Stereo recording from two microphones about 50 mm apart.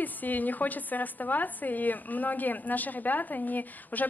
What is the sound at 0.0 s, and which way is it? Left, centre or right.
A woman's voice, left.